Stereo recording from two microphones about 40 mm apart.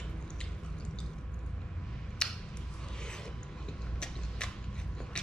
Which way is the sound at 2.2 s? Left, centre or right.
Left.